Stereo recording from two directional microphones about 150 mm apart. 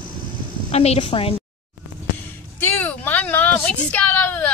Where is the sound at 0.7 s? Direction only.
45° left (ahead or behind).